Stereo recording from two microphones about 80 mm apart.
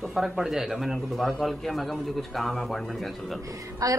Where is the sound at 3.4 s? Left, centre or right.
Right.